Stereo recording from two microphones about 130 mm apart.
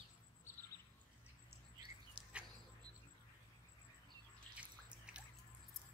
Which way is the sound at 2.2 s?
40° right (ahead or behind).